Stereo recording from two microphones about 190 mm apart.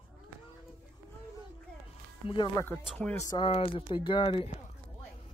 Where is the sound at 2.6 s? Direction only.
5° left (ahead or behind).